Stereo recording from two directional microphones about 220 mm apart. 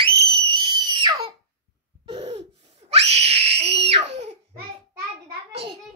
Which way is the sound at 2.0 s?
25° right (ahead or behind).